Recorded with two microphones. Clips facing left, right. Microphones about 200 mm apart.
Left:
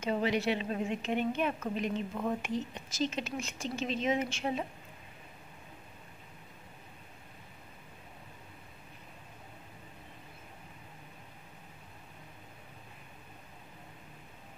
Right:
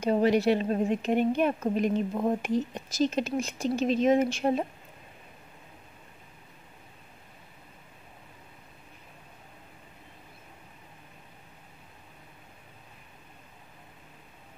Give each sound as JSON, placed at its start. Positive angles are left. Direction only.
{"t": 0.0, "sound": "a woman's voice", "side_deg": -40}